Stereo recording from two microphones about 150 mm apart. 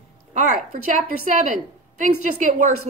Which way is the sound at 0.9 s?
55° right (ahead or behind).